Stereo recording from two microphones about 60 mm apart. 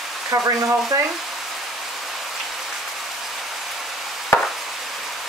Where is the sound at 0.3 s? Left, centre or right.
Right.